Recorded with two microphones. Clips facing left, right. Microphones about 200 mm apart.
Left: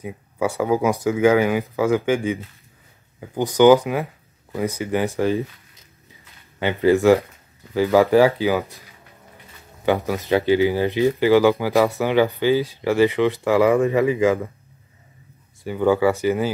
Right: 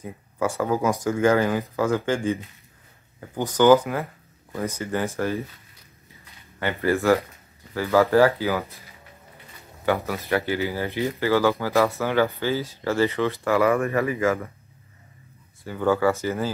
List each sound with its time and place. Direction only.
0.0 s speech: 10° left (ahead or behind)
6.6 s speech: 20° left (ahead or behind)
9.8 s speech: 20° left (ahead or behind)
15.6 s speech: 15° left (ahead or behind)